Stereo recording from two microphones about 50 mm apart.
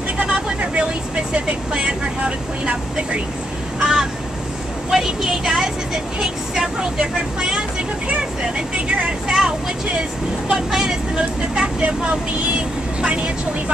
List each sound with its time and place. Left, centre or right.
0.2 s vehicle: right
1.3 s speech: centre
3.8 s speech: centre
10.5 s speech: centre